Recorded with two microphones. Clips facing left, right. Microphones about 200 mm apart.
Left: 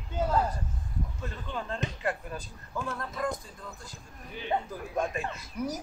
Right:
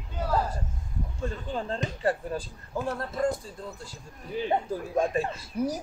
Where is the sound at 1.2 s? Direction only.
30° right (ahead or behind).